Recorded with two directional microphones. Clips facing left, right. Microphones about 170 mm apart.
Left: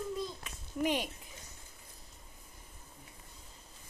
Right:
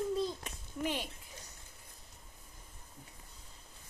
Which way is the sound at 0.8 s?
15° left (ahead or behind).